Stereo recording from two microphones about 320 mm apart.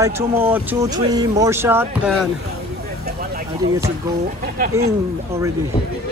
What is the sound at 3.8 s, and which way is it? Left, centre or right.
Speech, centre.